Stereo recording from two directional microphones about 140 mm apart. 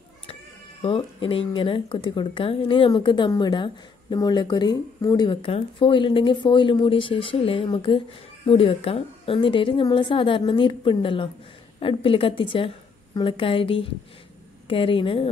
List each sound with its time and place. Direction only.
0.8 s speech: 40° left (ahead or behind)